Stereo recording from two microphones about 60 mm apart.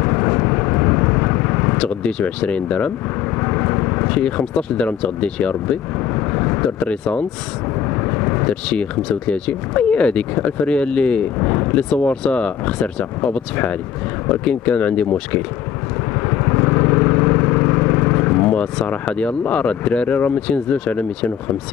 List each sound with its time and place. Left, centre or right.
0.0 s vehicle: left
1.9 s speech: centre
3.3 s vehicle: left
4.2 s speech: centre
6.1 s vehicle: left
6.9 s speech: centre
7.9 s vehicle: left
9.3 s speech: centre
11.3 s artillery fire: left
11.7 s speech: centre
16.2 s vehicle: left
20.5 s speech: centre